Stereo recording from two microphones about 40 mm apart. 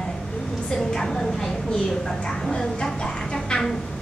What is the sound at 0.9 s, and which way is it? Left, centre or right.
Vehicle, centre.